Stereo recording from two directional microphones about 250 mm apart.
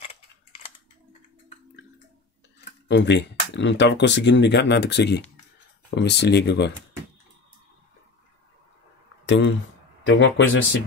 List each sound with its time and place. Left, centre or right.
2.9 s speech: left
9.2 s a sound: left
10.0 s speech: left